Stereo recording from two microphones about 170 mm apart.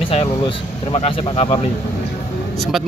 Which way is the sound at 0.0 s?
35° left (ahead or behind).